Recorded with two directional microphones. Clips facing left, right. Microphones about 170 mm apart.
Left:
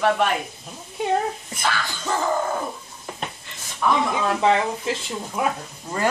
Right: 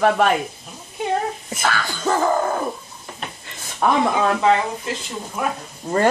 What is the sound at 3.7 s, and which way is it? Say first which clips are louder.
Dog: right 3 dB; 55° right (ahead or behind).